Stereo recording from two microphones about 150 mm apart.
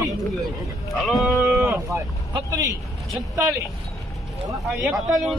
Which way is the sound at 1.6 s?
15° right (ahead or behind).